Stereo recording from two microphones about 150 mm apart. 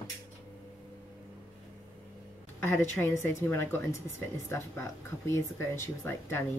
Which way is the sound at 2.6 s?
15° left (ahead or behind).